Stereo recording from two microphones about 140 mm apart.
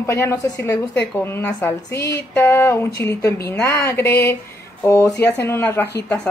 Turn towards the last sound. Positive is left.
turn(degrees=15)  # may be behind; listen again after turning